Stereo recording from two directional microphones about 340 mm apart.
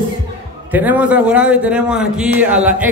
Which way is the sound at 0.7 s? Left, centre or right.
Centre.